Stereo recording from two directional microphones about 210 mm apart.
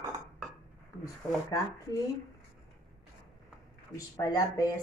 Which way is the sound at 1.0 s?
15° left (ahead or behind).